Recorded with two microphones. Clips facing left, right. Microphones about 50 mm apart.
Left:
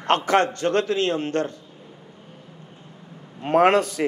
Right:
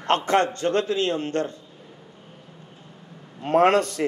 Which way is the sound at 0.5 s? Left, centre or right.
Left.